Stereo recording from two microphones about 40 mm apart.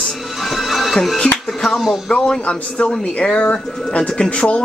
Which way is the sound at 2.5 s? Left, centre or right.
Left.